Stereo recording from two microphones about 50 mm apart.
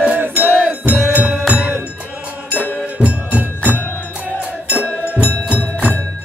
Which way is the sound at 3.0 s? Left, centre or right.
Right.